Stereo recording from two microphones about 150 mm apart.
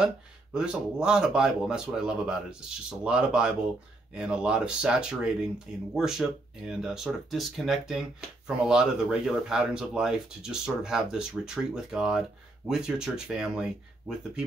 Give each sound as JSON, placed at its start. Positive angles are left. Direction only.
{"t": 0.0, "sound": "speech", "side_deg": -5}